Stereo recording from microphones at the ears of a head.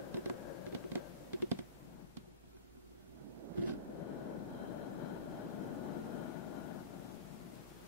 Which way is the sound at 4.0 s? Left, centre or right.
Left.